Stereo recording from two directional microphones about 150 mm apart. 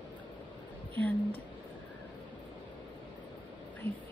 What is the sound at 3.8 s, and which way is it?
Whispering, 40° right (ahead or behind).